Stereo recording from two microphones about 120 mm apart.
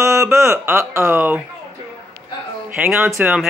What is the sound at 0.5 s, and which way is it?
Speech, 20° right (ahead or behind).